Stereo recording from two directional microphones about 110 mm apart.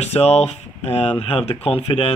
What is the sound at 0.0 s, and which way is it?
Speech, 75° left (ahead or behind).